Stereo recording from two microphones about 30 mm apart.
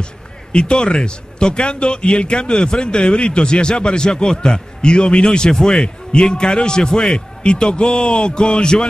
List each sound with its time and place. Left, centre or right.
0.5 s a man's voice: left
7.2 s a man's voice: left